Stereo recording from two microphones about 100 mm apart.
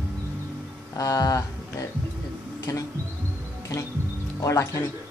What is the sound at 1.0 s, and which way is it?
Speech, 35° left (ahead or behind).